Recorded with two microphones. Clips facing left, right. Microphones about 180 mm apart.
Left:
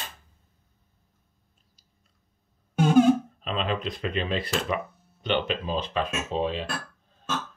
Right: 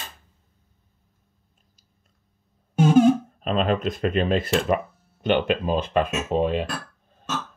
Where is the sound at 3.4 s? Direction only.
45° right (ahead or behind).